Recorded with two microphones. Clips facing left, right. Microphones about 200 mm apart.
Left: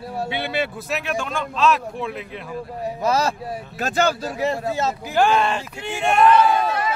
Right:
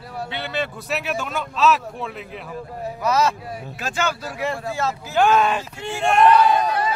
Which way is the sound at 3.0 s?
30° left (ahead or behind).